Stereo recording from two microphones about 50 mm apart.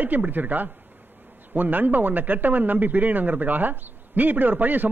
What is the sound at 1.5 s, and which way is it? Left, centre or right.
Speech, right.